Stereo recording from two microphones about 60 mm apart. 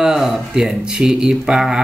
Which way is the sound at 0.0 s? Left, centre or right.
Centre.